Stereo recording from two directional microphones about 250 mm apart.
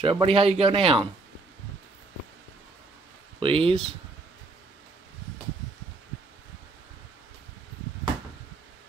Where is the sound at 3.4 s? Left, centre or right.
Right.